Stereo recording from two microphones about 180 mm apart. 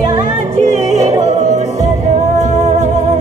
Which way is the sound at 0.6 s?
40° right (ahead or behind).